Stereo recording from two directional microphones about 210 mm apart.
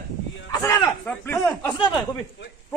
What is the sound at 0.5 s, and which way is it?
Speech, 15° left (ahead or behind).